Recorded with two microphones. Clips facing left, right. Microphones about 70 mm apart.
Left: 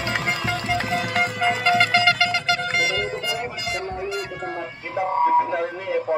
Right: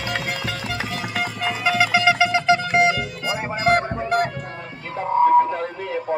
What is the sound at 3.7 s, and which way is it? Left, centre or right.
Music, right.